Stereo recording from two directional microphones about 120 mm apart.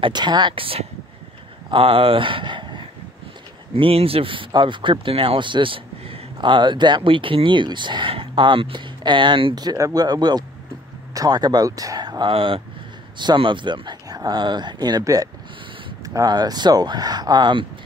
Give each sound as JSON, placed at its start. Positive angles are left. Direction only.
{"t": 0.0, "sound": "speech", "side_deg": -40}
{"t": 3.7, "sound": "speech", "side_deg": -50}